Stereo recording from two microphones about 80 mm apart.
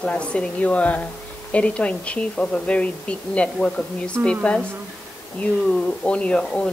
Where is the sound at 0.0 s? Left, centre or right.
Centre.